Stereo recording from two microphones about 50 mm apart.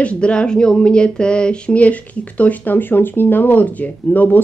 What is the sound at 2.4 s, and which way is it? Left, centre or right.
Speech, left.